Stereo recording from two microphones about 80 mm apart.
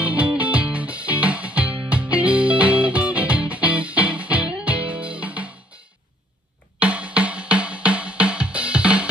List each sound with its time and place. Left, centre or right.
0.0 s music: centre
6.8 s music: centre